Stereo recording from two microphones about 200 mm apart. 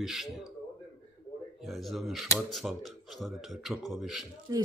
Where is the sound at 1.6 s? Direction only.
Centre (ahead or behind).